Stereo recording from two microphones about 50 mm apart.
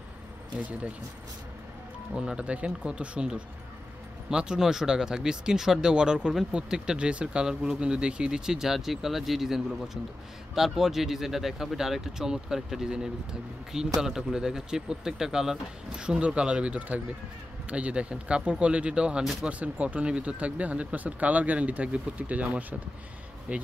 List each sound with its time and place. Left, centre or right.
0.6 s speech: right
2.1 s speech: centre